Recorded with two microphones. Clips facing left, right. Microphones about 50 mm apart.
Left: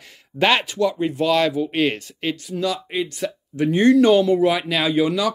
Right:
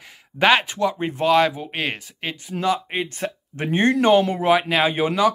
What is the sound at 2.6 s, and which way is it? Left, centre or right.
Speech, right.